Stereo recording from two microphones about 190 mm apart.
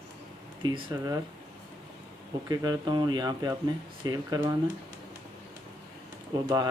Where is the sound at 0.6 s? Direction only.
20° right (ahead or behind).